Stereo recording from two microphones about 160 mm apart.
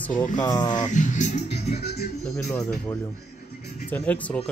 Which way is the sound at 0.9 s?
50° left (ahead or behind).